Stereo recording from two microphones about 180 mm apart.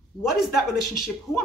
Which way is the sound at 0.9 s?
Centre (ahead or behind).